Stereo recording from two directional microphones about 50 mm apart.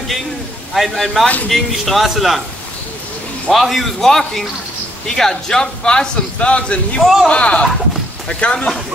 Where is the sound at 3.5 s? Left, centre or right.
Centre; by 8.7 s left.